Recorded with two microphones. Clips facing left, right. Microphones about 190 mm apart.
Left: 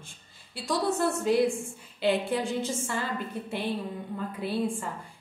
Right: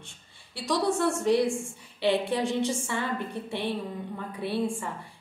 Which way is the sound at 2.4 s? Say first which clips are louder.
Right 3 dB; centre (ahead or behind).